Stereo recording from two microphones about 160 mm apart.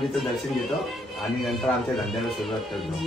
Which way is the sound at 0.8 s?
Centre (ahead or behind).